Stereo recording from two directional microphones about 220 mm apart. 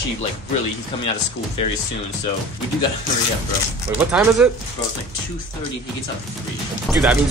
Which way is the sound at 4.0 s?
5° right (ahead or behind).